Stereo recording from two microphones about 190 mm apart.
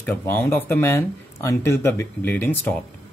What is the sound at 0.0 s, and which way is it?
Speech, 10° left (ahead or behind).